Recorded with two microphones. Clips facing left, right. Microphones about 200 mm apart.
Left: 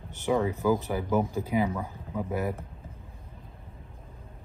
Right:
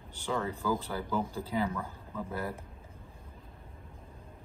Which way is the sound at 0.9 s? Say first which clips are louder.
Left 6 dB; 15° left (ahead or behind).